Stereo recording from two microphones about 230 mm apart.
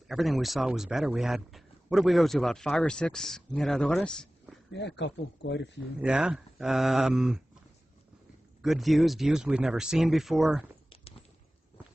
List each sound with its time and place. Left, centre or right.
0.1 s speech: centre
4.7 s speech: left
5.9 s speech: centre
8.6 s speech: centre